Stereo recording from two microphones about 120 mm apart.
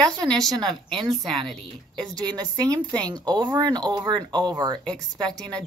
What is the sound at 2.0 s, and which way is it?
Speech, 5° left (ahead or behind).